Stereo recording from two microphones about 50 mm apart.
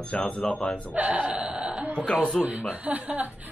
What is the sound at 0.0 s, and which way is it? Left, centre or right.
Speech, left.